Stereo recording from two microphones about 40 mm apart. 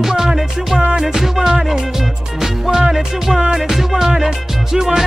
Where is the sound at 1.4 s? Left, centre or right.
Centre.